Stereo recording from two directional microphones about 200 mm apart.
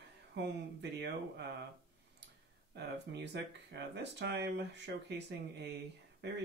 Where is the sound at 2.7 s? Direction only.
60° right (ahead or behind).